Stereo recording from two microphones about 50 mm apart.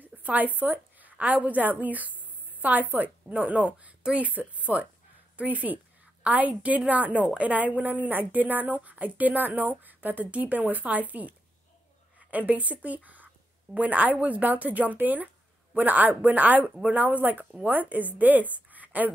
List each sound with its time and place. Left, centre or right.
0.0 s a woman's voice: right